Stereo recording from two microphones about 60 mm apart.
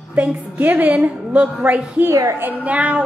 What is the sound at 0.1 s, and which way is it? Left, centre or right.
A woman's voice, right.